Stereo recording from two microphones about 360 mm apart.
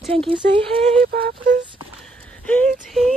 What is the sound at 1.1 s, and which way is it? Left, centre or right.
Speech, right.